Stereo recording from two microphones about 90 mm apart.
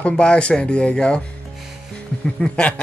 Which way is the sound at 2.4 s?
10° left (ahead or behind).